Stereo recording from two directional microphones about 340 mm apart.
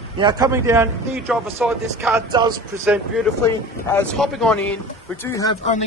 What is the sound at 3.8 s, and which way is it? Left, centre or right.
Speech, centre.